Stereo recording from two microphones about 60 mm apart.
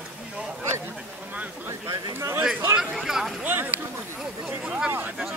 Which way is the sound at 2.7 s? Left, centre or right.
Centre.